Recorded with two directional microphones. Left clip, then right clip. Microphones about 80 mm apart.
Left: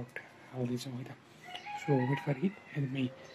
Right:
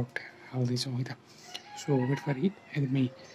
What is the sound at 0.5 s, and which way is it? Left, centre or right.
Speech, centre.